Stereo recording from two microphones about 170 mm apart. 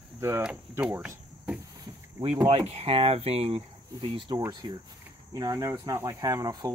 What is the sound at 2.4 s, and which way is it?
Speech, 35° right (ahead or behind).